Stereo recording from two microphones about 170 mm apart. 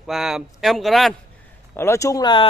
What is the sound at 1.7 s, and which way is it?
Speech, 15° left (ahead or behind).